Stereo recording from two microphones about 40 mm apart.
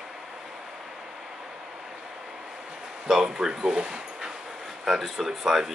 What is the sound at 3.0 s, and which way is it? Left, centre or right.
Speech, centre.